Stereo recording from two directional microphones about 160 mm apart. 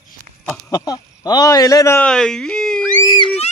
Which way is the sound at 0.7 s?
25° left (ahead or behind).